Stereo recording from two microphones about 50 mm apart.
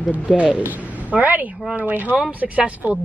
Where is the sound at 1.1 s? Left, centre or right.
Right.